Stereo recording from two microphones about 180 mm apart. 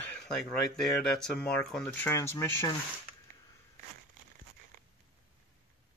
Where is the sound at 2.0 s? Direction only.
15° left (ahead or behind).